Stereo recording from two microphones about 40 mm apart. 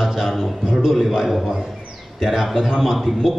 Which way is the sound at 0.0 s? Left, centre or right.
Centre.